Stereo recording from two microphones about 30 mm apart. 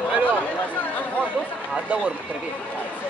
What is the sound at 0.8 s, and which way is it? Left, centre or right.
Speech, left.